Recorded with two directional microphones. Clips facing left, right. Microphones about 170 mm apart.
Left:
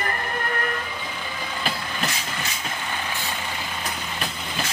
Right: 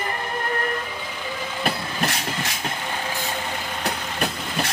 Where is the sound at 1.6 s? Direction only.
65° right (ahead or behind).